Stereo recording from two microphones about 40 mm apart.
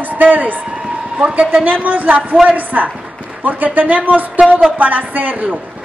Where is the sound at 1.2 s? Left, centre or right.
Right.